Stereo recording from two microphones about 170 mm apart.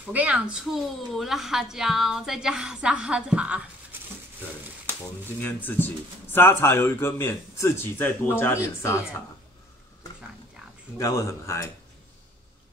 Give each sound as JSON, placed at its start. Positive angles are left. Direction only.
{"t": 0.1, "sound": "a woman's voice", "side_deg": -5}
{"t": 5.4, "sound": "speech", "side_deg": 10}
{"t": 11.0, "sound": "speech", "side_deg": 20}